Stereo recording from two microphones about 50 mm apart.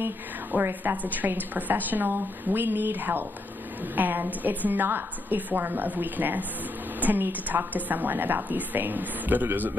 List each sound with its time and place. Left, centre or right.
0.5 s a woman's voice: right